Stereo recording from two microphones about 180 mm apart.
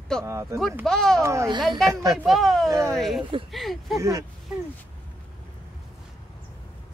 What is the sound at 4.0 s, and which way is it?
Speech, 20° right (ahead or behind).